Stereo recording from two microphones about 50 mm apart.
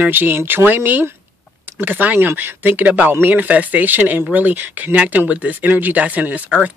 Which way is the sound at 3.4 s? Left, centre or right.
Right.